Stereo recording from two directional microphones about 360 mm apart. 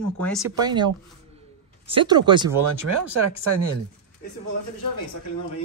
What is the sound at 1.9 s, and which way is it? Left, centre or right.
Speech, centre.